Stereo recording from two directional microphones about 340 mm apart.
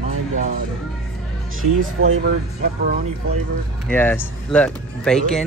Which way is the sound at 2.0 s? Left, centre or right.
Right.